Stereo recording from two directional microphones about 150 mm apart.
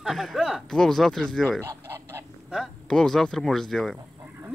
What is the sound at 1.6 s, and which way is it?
Goose, 15° right (ahead or behind).